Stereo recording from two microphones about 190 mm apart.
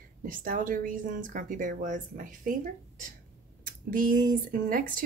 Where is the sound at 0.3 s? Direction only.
45° right (ahead or behind).